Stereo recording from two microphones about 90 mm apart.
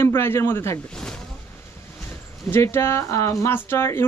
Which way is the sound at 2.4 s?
25° left (ahead or behind).